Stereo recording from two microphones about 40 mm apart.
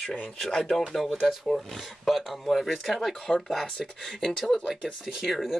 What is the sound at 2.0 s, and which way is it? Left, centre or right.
Speech, centre.